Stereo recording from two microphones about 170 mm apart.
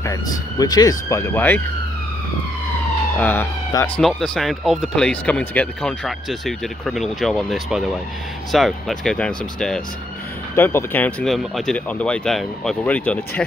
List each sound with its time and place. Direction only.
0.0 s speech: 20° left (ahead or behind)
3.2 s speech: 10° left (ahead or behind)
4.0 s speech: centre (ahead or behind)